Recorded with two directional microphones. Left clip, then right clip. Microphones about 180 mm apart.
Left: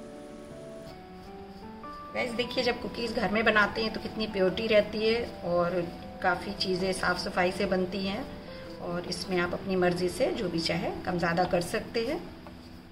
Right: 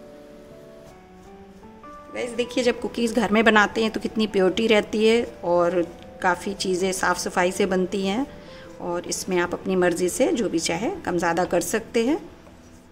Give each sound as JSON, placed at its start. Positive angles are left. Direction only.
{"t": 2.1, "sound": "a woman's voice", "side_deg": -65}